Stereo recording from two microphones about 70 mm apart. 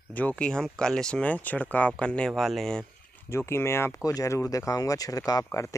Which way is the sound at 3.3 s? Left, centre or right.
Left.